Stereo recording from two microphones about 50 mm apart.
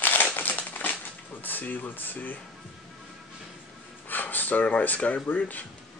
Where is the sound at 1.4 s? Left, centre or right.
Left.